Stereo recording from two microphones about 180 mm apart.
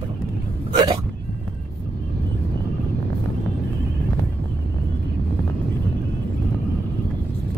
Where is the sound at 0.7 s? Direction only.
25° right (ahead or behind).